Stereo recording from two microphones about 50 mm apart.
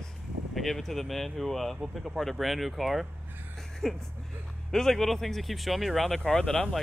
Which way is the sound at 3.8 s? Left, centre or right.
Centre.